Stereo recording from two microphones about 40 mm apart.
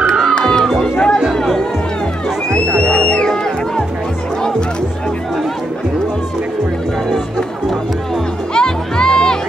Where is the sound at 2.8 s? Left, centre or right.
Left.